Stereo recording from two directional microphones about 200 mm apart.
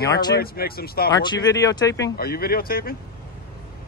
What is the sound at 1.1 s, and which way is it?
Speech, 20° left (ahead or behind).